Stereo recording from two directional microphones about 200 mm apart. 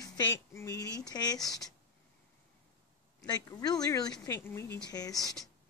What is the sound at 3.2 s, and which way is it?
Speech, 20° left (ahead or behind).